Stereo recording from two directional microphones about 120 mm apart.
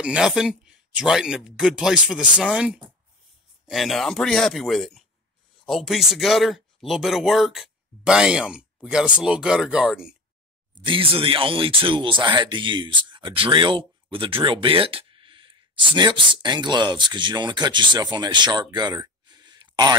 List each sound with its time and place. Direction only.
0.0 s speech: 5° right (ahead or behind)
10.7 s speech: 45° right (ahead or behind)